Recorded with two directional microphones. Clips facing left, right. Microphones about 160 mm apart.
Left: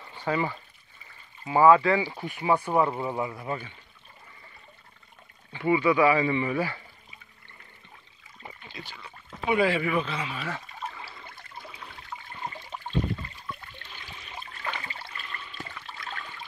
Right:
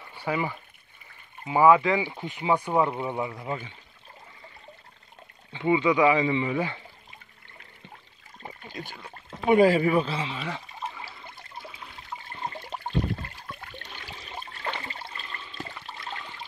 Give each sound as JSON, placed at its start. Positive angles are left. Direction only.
{"t": 0.1, "sound": "speech", "side_deg": -10}
{"t": 5.5, "sound": "speech", "side_deg": -20}
{"t": 8.4, "sound": "a sound", "side_deg": -40}
{"t": 9.5, "sound": "speech", "side_deg": -40}
{"t": 12.6, "sound": "a sound", "side_deg": -65}
{"t": 14.1, "sound": "water", "side_deg": -35}